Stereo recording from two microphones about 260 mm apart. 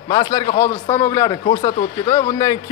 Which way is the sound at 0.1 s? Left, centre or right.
Centre.